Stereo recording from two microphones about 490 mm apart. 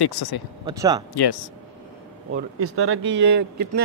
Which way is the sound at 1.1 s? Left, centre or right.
Left.